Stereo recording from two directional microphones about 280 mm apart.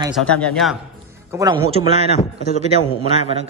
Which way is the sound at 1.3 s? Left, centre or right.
Centre.